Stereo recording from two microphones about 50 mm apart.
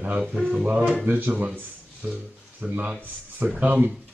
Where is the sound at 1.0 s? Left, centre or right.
Right.